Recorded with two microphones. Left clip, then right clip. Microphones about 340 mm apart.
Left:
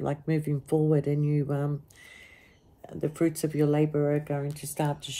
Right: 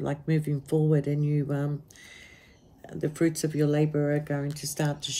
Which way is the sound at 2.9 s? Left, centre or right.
Centre.